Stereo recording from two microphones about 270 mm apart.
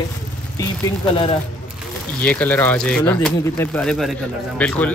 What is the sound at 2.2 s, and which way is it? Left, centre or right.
Speech, centre.